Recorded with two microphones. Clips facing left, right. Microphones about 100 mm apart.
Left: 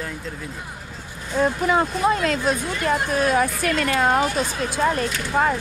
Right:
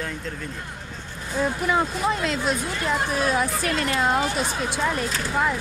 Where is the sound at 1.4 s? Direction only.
55° left (ahead or behind).